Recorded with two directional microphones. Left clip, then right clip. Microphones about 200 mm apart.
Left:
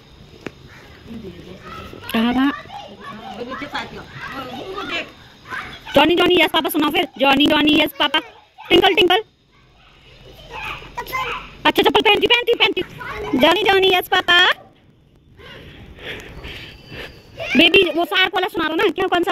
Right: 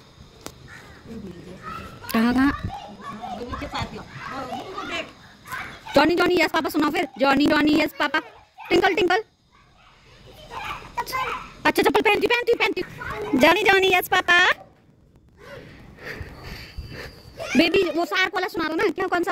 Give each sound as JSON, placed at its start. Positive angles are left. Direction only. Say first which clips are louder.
{"t": 2.1, "sound": "dog", "louder": "left 2 dB", "side_deg": -15}
{"t": 3.5, "sound": "a child's voice", "louder": "left 5 dB", "side_deg": -40}
{"t": 4.7, "sound": "children playing", "louder": "left 6 dB", "side_deg": -40}
{"t": 5.9, "sound": "speech", "louder": "left 5 dB", "side_deg": -5}
{"t": 11.0, "sound": "a child's voice", "louder": "left 2 dB", "side_deg": -10}
{"t": 16.0, "sound": "a sound", "louder": "left 5 dB", "side_deg": -5}
{"t": 17.6, "sound": "speech", "louder": "left 6 dB", "side_deg": -5}